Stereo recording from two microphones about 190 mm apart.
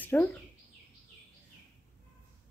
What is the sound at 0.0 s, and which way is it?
Speech, 10° left (ahead or behind).